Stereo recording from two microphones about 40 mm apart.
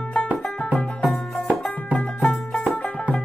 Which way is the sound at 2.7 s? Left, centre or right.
Left.